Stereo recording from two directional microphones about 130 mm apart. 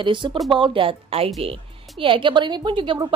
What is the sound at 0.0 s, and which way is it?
A woman's voice, 40° right (ahead or behind).